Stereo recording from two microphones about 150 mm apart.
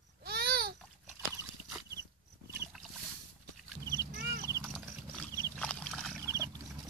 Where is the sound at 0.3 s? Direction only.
90° right.